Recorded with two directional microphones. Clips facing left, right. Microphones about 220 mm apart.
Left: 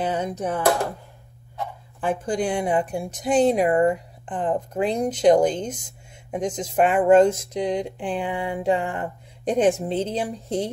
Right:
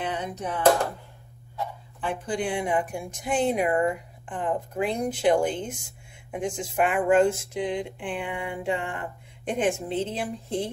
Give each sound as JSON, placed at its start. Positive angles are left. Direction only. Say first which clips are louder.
{"t": 0.0, "sound": "speech", "louder": "left 6 dB", "side_deg": 45}
{"t": 2.0, "sound": "speech", "louder": "left 5 dB", "side_deg": 45}